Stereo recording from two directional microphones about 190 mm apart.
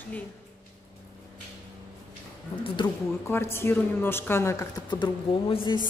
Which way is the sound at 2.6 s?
25° left (ahead or behind).